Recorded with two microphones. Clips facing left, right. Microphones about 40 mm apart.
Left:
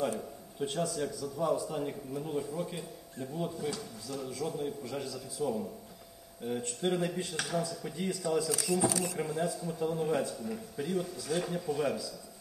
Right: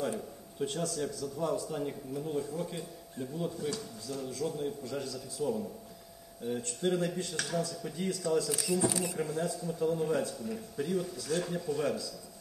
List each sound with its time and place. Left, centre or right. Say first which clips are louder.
0.6 s a man's voice: left 1 dB; centre
8.8 s speech: left 1 dB; right
9.2 s a man's voice: even; centre